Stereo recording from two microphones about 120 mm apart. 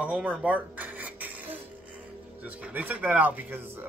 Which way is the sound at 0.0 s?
10° right (ahead or behind).